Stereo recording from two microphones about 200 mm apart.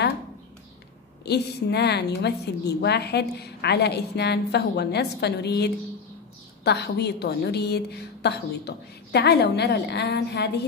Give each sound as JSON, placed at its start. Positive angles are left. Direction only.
{"t": 1.2, "sound": "a woman's voice", "side_deg": 55}